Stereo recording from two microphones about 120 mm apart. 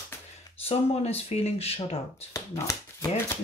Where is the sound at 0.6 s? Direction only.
60° left (ahead or behind).